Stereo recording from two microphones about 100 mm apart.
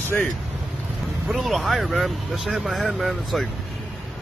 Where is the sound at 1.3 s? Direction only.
Centre (ahead or behind).